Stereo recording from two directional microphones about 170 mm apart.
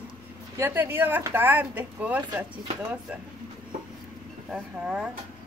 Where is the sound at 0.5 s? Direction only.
15° right (ahead or behind).